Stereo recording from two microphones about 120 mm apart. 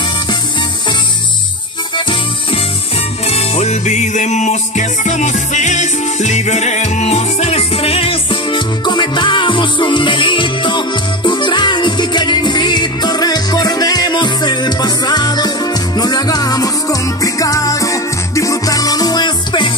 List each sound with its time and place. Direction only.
2.0 s music: 40° left (ahead or behind)
3.3 s music: 60° left (ahead or behind); by 19.7 s 40° left (ahead or behind)